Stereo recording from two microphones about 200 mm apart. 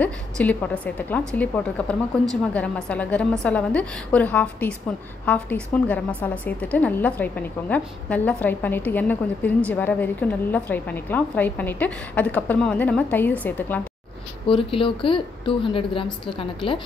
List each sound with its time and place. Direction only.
0.0 s a woman's voice: 5° left (ahead or behind)
14.5 s a woman's voice: 25° left (ahead or behind)